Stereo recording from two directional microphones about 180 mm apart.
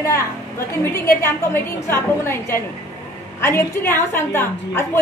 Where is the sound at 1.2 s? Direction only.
15° left (ahead or behind).